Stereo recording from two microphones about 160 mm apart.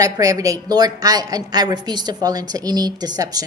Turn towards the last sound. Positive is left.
turn(degrees=-25)  # may be behind; listen again after turning